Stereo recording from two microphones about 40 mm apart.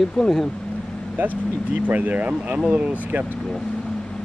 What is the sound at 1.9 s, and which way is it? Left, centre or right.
Speech, right.